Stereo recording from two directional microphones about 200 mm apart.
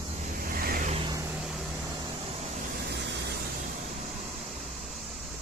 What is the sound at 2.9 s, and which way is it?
Vehicle, 60° right (ahead or behind).